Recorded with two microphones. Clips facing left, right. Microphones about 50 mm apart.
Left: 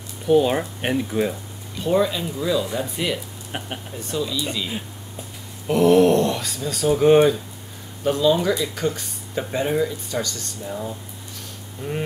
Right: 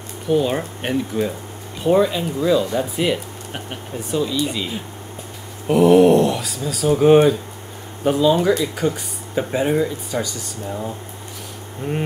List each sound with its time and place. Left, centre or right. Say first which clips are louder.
0.3 s speech: left 1 dB; centre
1.8 s speech: right 4 dB; centre
3.5 s speech: left 1 dB; centre
4.1 s speech: right 4 dB; centre
5.7 s speech: right 3 dB; centre
11.8 s speech: right 3 dB; right